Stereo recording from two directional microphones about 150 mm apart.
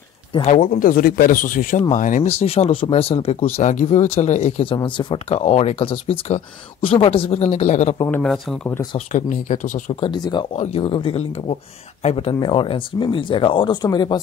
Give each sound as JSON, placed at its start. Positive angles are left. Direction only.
{"t": 0.5, "sound": "speech", "side_deg": 60}
{"t": 2.3, "sound": "speech", "side_deg": 40}
{"t": 3.5, "sound": "speech", "side_deg": 50}
{"t": 4.7, "sound": "speech", "side_deg": 30}
{"t": 8.1, "sound": "speech", "side_deg": 5}
{"t": 8.9, "sound": "speech", "side_deg": 50}
{"t": 9.9, "sound": "speech", "side_deg": 30}
{"t": 10.5, "sound": "speech", "side_deg": 45}
{"t": 10.8, "sound": "speech", "side_deg": 35}
{"t": 12.4, "sound": "speech", "side_deg": 30}